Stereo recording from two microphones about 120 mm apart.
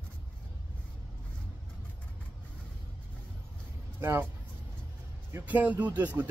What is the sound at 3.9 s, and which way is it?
Speech, 20° right (ahead or behind).